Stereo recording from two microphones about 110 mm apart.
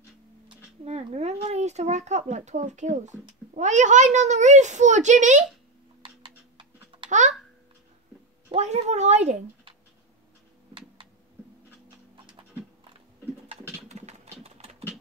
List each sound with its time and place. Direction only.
0.8 s a sound: 80° right
3.5 s a child's voice: 90° right
7.1 s speech: 90° right
8.5 s a child's voice: 90° right
13.8 s typing: 90° right; by 14.9 s 70° right (ahead or behind)